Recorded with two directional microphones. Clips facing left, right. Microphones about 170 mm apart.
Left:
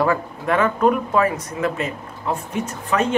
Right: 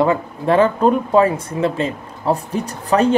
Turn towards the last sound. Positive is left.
turn(degrees=-35)  # may be behind; listen again after turning